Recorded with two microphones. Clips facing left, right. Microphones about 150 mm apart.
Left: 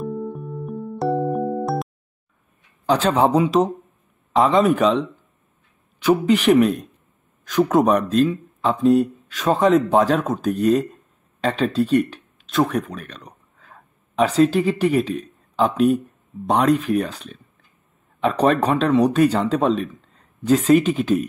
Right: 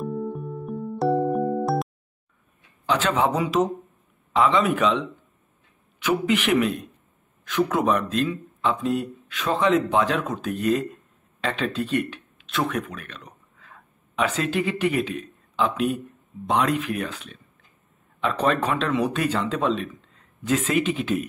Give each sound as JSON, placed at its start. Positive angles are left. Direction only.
{"t": 0.0, "sound": "music", "side_deg": 0}
{"t": 2.9, "sound": "speech", "side_deg": 35}